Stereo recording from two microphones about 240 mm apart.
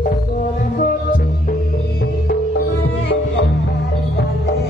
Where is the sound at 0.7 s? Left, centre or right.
Left.